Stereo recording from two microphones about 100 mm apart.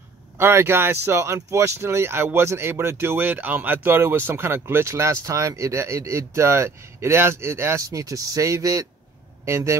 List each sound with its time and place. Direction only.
0.4 s speech: 25° right (ahead or behind)